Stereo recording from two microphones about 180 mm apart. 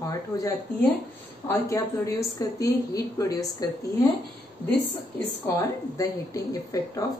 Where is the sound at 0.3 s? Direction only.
20° left (ahead or behind).